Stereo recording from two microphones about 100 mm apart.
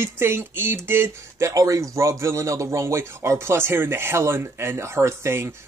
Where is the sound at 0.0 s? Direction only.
25° right (ahead or behind).